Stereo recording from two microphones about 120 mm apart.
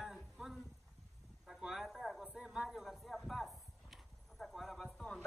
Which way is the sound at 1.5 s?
5° right (ahead or behind).